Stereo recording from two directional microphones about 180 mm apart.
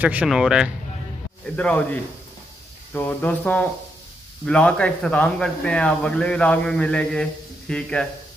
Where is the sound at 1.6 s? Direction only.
10° left (ahead or behind).